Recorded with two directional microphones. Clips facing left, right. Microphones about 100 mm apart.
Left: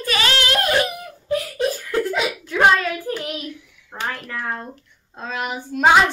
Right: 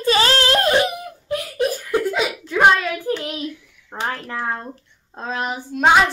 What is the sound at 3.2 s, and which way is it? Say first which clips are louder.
Hands: right 2 dB; 25° right (ahead or behind).